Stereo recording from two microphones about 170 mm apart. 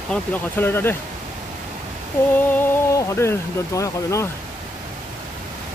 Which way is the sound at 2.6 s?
15° left (ahead or behind).